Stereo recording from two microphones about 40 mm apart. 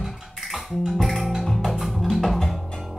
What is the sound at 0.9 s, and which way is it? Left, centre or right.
Music, centre.